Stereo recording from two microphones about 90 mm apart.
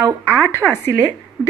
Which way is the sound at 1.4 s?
10° right (ahead or behind).